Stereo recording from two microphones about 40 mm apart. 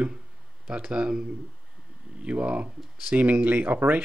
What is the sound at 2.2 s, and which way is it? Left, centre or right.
Speech, right.